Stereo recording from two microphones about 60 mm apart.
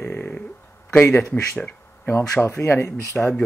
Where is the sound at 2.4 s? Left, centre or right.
Left.